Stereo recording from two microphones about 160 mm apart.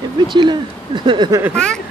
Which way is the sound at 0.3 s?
30° right (ahead or behind).